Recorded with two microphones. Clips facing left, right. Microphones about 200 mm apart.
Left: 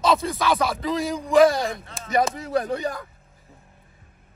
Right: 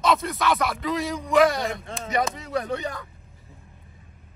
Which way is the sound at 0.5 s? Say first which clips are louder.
Left 2 dB; 30° left (ahead or behind).